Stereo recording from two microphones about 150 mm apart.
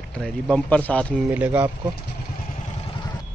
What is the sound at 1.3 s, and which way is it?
Speech, 10° right (ahead or behind).